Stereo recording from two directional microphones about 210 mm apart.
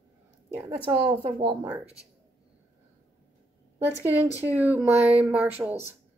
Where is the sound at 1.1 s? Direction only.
20° right (ahead or behind).